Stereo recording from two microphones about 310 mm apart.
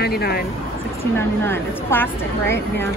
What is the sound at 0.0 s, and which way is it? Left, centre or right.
Speech, left.